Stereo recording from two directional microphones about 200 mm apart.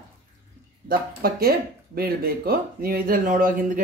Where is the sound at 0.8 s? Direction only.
50° right (ahead or behind).